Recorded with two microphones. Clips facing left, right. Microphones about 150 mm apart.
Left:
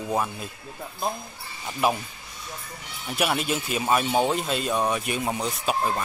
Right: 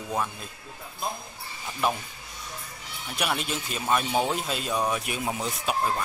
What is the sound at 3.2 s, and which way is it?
Speech, 5° left (ahead or behind).